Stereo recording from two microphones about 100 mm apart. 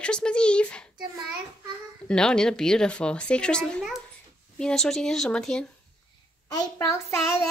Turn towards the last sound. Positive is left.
turn(degrees=30)  # may be behind; listen again after turning